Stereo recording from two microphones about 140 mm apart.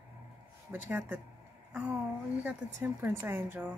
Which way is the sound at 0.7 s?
15° right (ahead or behind).